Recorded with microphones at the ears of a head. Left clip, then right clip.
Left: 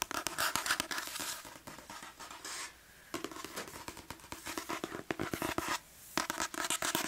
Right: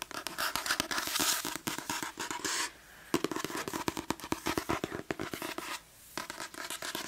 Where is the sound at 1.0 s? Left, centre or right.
Right.